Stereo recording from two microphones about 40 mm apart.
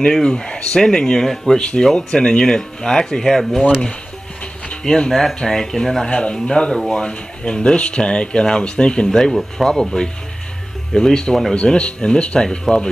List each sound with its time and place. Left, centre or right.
0.1 s speech: centre
1.6 s speech: left
4.8 s speech: left
6.0 s speech: left
9.3 s speech: centre
9.7 s speech: centre
12.7 s speech: centre